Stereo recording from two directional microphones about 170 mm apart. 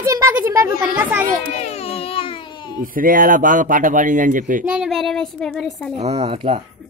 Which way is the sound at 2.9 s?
55° right (ahead or behind).